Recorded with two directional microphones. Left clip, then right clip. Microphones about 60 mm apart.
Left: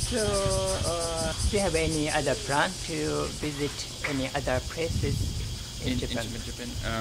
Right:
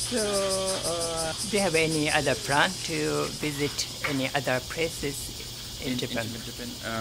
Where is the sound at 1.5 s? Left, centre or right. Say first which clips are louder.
Right 3 dB; right.